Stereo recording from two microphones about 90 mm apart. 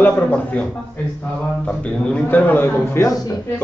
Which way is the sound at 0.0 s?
15° left (ahead or behind).